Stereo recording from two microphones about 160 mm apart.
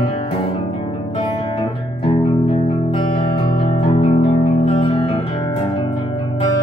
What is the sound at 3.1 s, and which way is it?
Music, 30° left (ahead or behind).